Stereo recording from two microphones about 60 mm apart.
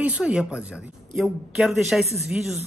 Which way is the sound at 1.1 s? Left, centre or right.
Centre.